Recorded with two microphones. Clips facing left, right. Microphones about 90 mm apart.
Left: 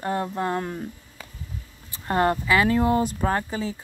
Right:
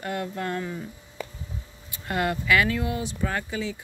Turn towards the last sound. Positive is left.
turn(degrees=35)  # may be behind; listen again after turning